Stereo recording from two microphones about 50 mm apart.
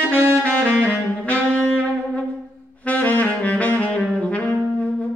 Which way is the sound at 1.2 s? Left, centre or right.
Left.